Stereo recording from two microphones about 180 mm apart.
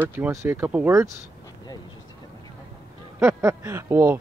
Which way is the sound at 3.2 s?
15° right (ahead or behind).